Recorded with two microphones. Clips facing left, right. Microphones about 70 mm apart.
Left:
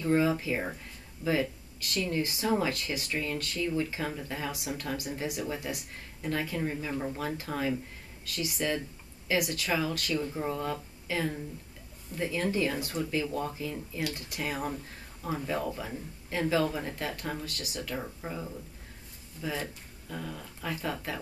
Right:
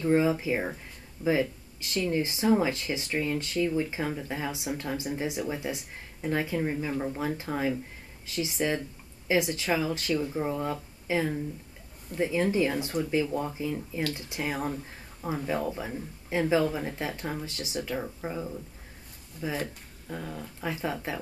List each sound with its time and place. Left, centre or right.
0.0 s speech: centre
19.4 s speech: centre